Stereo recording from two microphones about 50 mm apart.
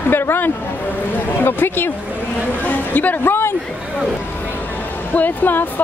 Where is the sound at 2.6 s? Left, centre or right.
Left.